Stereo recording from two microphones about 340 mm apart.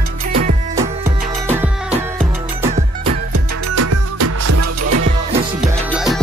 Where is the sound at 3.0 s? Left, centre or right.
Right.